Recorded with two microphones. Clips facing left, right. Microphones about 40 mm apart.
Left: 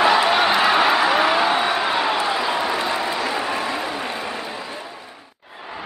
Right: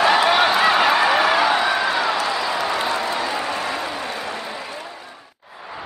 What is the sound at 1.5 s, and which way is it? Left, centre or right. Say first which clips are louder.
Crowd: right 1 dB; left.